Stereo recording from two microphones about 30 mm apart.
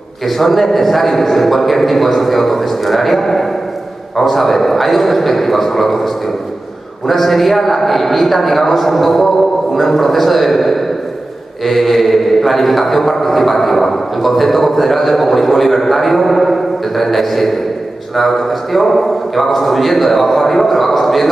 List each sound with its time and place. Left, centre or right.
0.4 s mantra: centre